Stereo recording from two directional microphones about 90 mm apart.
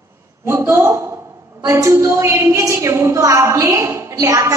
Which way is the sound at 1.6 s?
40° right (ahead or behind).